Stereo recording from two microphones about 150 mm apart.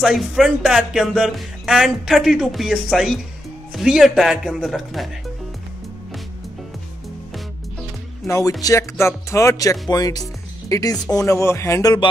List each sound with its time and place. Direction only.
0.0 s speech: centre (ahead or behind)
8.3 s speech: 20° left (ahead or behind)